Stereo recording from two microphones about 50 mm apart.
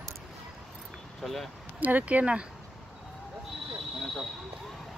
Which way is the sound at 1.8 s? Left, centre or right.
Right.